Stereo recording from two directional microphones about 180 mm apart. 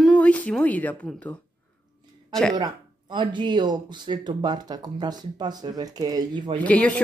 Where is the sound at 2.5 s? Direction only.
25° right (ahead or behind).